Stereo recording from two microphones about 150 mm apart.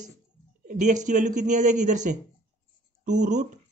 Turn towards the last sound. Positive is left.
turn(degrees=-55)  # may be behind; listen again after turning